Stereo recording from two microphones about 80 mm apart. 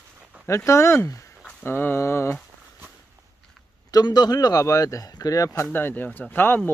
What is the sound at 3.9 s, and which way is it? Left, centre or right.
Speech, left.